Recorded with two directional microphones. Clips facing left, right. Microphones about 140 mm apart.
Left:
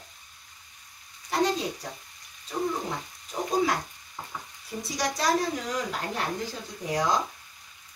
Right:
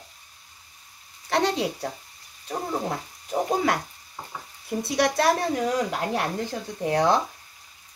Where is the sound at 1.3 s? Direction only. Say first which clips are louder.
Right 2 dB; 70° right (ahead or behind).